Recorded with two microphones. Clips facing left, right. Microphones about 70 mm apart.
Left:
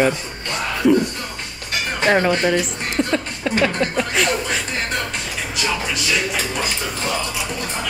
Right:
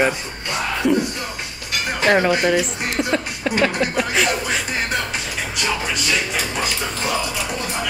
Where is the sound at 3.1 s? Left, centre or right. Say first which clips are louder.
Even; centre.